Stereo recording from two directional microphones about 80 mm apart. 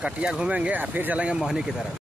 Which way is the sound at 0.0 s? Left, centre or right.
Centre.